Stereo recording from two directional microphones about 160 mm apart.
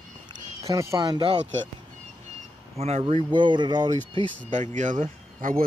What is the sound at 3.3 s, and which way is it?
Speech, 30° right (ahead or behind).